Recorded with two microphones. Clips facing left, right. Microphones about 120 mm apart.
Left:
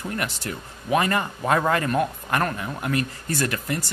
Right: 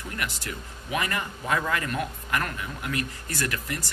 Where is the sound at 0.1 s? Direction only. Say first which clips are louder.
Left 2 dB; 35° left (ahead or behind).